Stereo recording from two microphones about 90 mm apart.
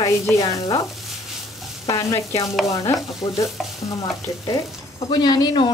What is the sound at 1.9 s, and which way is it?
Frying, 35° left (ahead or behind).